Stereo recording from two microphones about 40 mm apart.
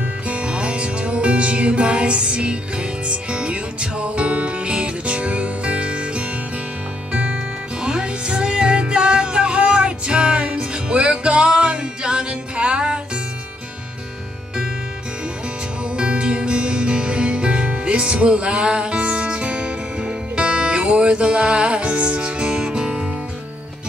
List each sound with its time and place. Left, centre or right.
0.3 s music: right
7.8 s music: right
15.8 s music: right